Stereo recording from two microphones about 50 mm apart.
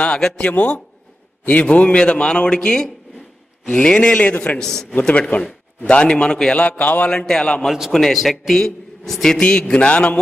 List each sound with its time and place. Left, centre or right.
0.0 s a man's voice: centre
4.6 s a man's voice: centre
4.9 s a man's voice: left
6.8 s a man's voice: left
7.1 s a man's voice: centre
7.9 s a man's voice: centre
9.4 s a man's voice: left